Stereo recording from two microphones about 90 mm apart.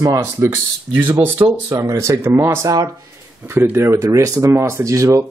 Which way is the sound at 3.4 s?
25° right (ahead or behind).